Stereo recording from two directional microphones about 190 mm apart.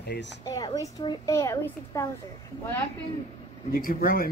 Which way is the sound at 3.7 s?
50° left (ahead or behind).